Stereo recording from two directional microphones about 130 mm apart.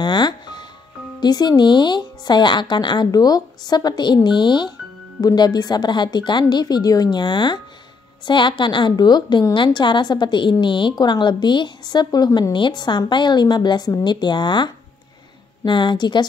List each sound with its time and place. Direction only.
0.0 s music: 35° left (ahead or behind)
1.2 s speech: 30° left (ahead or behind)